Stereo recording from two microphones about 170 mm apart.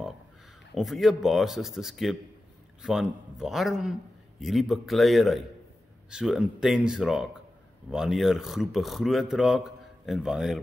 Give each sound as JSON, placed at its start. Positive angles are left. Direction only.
{"t": 0.7, "sound": "speech", "side_deg": 0}